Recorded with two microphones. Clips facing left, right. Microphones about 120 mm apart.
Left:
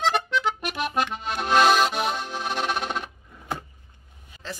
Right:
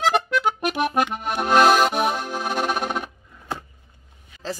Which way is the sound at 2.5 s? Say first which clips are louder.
Right 3 dB; 10° right (ahead or behind).